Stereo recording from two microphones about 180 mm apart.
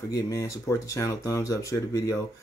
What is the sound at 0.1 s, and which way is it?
Speech, 20° left (ahead or behind).